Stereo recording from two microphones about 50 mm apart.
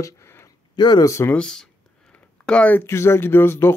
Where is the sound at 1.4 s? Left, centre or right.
Centre.